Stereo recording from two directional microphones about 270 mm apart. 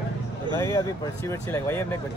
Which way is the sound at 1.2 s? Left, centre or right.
Centre.